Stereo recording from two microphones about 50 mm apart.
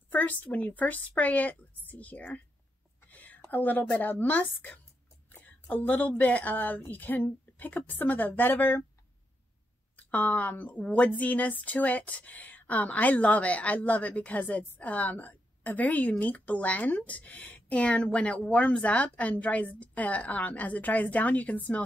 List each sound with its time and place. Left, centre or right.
0.1 s speech: left
3.1 s a sound: left
4.1 s speech: left
9.9 s speech: left